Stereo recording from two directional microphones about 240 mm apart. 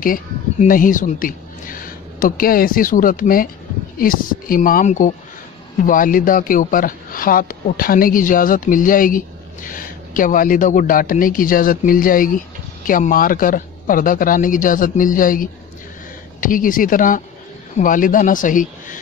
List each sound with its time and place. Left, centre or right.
0.0 s speech: left